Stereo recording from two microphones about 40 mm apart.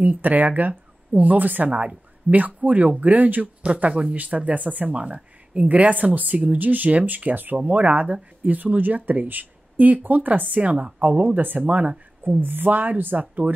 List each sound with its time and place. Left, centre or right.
0.0 s speech: right
3.6 s speech: right
12.3 s speech: right